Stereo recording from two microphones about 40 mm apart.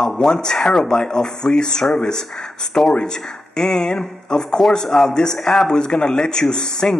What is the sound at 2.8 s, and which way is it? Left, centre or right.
Speech, centre.